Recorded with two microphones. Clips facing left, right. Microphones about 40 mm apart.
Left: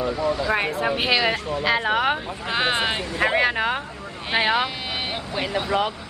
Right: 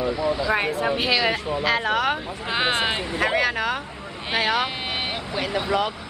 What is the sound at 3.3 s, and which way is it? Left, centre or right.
A man's voice, centre.